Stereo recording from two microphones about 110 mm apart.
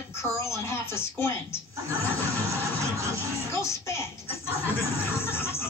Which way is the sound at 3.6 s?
25° left (ahead or behind).